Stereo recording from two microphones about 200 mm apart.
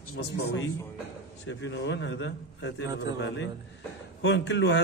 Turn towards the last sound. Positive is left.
turn(degrees=60)  # may be behind; listen again after turning